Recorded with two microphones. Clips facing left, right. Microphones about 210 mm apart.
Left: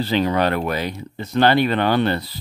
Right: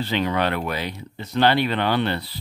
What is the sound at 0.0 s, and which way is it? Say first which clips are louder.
Speech: left 4 dB; 35° left (ahead or behind).